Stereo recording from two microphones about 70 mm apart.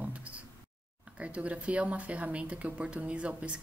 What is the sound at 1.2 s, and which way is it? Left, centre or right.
Speech, centre.